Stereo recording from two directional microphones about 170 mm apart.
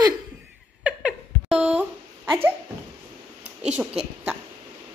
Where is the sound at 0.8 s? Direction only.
5° right (ahead or behind).